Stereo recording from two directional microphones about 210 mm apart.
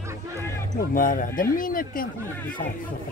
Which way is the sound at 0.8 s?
40° left (ahead or behind).